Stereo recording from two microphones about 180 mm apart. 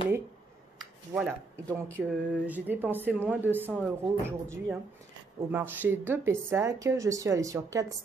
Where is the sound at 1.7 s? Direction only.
10° left (ahead or behind).